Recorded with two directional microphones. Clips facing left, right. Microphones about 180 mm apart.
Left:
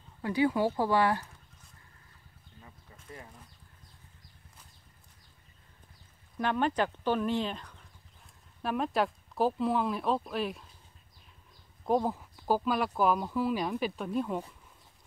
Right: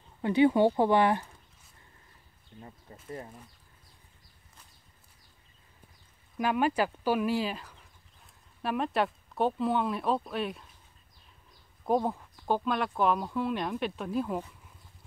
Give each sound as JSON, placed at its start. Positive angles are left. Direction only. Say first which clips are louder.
{"t": 0.2, "sound": "speech", "louder": "right 5 dB", "side_deg": -25}
{"t": 2.6, "sound": "a sound", "louder": "right 7 dB", "side_deg": -35}
{"t": 6.3, "sound": "speech", "louder": "right 2 dB", "side_deg": -10}
{"t": 11.8, "sound": "speech", "louder": "right 1 dB", "side_deg": 0}